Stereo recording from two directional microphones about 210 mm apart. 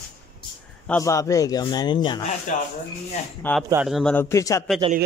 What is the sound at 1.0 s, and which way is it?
Speech, 15° left (ahead or behind).